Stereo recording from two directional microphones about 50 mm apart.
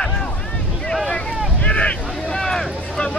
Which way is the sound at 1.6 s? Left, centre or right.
Left.